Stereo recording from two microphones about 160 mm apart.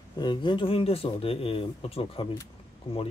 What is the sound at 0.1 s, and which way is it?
Speech, 25° left (ahead or behind).